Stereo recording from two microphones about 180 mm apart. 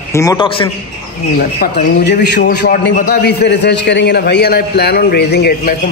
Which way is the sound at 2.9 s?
60° left (ahead or behind).